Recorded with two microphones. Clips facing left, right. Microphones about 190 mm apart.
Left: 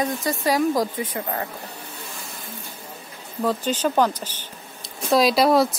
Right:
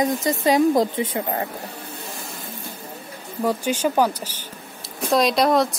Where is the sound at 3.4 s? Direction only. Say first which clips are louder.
Right 1 dB; 10° right (ahead or behind).